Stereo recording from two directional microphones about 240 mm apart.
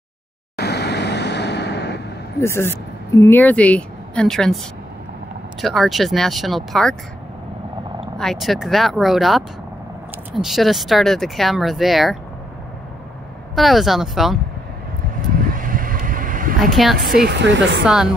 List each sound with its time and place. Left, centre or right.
0.6 s a sound: left
2.4 s speech: centre
5.6 s speech: centre
8.2 s speech: centre
13.6 s speech: centre
15.5 s vehicle: right
16.7 s speech: centre
17.2 s speech: right
17.8 s speech: centre